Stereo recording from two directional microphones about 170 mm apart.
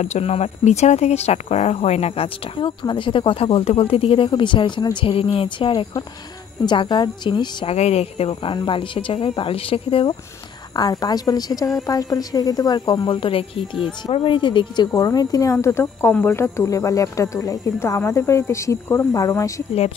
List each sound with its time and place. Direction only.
0.0 s a woman's voice: 40° left (ahead or behind); by 19.5 s 20° left (ahead or behind)